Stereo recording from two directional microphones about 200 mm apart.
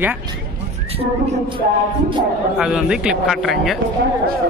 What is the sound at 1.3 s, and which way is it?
Music, 25° right (ahead or behind).